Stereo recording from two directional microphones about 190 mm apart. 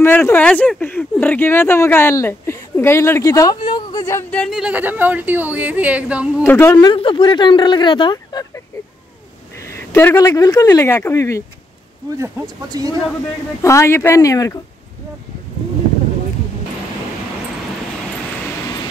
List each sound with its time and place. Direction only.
0.0 s speech: 10° left (ahead or behind); by 6.4 s 5° right (ahead or behind)
6.4 s speech: 10° left (ahead or behind)
6.9 s speech: 25° left (ahead or behind)
12.2 s speech: 15° right (ahead or behind)
13.6 s speech: 15° left (ahead or behind)